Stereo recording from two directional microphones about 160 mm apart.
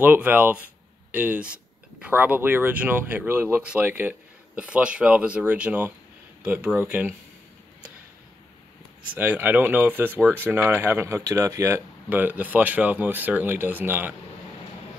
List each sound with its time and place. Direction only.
0.0 s speech: 10° right (ahead or behind)
9.1 s speech: 10° right (ahead or behind)